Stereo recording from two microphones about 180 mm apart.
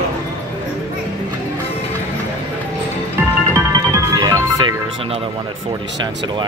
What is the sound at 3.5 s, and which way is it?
Music, 20° right (ahead or behind).